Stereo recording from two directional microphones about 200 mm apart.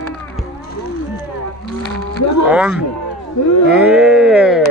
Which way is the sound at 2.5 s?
5° right (ahead or behind).